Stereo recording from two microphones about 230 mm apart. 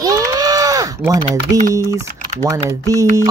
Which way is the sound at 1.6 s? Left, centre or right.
Centre.